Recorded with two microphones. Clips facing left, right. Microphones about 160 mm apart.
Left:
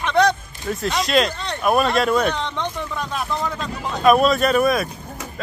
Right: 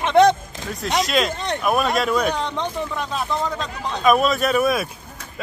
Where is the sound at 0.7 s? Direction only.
Centre (ahead or behind).